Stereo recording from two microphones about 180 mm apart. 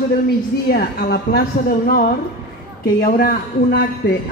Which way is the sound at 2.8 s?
55° left (ahead or behind).